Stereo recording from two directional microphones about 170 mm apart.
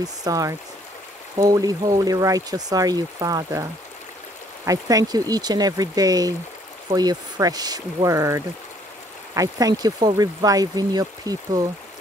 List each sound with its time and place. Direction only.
0.0 s speech: 20° right (ahead or behind)
4.6 s speech: 20° right (ahead or behind)